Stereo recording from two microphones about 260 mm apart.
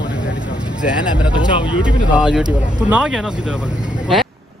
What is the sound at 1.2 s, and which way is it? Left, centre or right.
Speech, centre.